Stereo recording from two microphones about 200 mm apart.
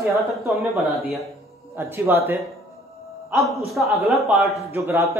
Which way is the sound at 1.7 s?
10° right (ahead or behind).